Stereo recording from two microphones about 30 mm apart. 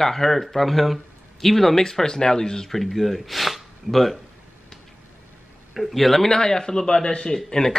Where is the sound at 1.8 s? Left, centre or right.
Left.